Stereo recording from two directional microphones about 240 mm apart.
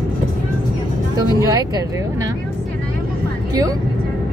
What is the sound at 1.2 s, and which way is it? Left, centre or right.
Speech, centre.